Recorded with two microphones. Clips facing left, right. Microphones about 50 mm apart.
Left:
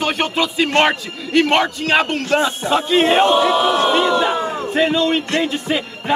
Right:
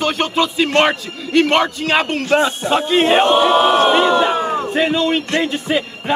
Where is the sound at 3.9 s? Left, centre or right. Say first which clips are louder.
Right 2 dB; right.